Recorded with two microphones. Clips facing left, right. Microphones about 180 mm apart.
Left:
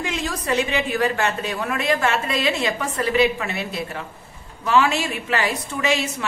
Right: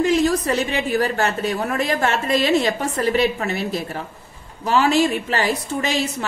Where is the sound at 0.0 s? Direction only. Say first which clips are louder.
Right 9 dB; 35° right (ahead or behind).